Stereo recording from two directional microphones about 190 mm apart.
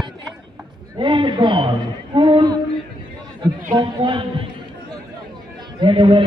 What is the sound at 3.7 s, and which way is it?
Speech, 25° right (ahead or behind).